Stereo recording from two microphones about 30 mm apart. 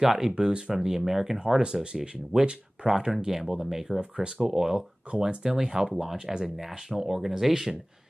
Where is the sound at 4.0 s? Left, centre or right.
Right.